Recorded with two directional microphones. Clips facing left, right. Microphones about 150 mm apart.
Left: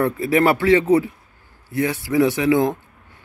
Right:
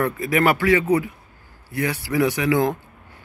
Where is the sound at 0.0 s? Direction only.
30° left (ahead or behind).